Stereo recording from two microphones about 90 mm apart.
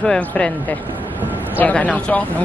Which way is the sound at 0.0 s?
5° left (ahead or behind).